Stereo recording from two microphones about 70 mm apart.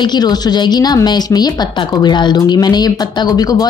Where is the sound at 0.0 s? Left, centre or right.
Left.